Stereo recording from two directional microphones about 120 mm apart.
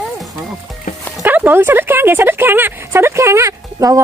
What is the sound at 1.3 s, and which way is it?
Speech, 15° right (ahead or behind).